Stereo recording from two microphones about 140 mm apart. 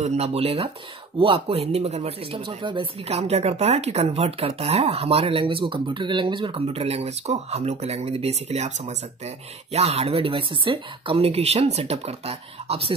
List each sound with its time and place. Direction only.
0.0 s speech: 50° right (ahead or behind)